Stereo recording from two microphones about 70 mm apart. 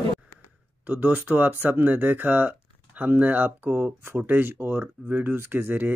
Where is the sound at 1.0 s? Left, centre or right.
Right.